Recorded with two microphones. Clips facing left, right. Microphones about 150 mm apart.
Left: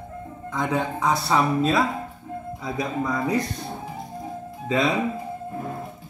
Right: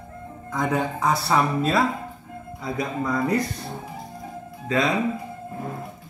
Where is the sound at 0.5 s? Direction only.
5° right (ahead or behind).